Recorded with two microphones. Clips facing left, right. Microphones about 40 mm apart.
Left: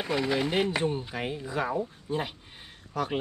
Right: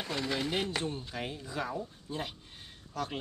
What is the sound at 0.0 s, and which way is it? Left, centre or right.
Speech, centre.